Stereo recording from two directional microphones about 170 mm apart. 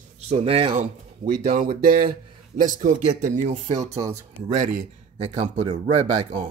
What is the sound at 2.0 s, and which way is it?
A man's voice, 40° right (ahead or behind).